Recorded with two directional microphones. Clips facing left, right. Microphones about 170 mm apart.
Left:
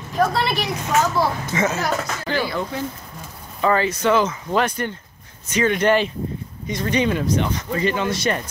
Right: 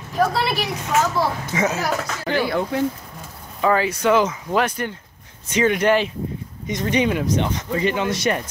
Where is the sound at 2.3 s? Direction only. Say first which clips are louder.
Right 3 dB; 60° right (ahead or behind).